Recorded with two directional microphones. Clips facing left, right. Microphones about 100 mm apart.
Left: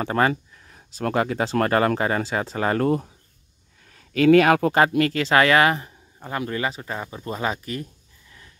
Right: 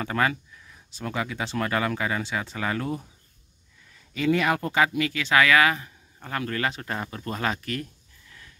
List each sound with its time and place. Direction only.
0.0 s speech: 35° left (ahead or behind)
3.9 s speech: 75° left (ahead or behind)
4.7 s speech: 45° left (ahead or behind); by 5.9 s 30° left (ahead or behind)
6.1 s speech: 15° left (ahead or behind)
6.7 s speech: 5° left (ahead or behind)